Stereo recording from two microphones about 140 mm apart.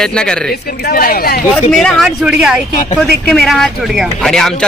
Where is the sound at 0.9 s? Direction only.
90° left.